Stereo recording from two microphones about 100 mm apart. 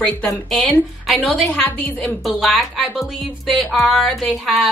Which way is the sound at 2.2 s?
Centre (ahead or behind).